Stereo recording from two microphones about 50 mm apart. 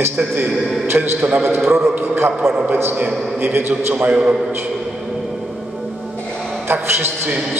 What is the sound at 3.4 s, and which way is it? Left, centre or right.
Speech, right.